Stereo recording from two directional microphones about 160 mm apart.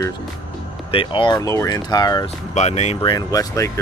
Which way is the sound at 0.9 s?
30° left (ahead or behind).